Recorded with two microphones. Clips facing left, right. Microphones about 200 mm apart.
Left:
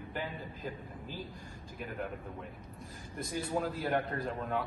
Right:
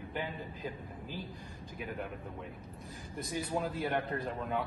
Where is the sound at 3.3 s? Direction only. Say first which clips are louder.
Left 1 dB; centre (ahead or behind).